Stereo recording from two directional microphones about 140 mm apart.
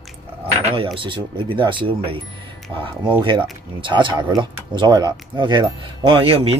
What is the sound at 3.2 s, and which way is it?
Speech, 35° right (ahead or behind).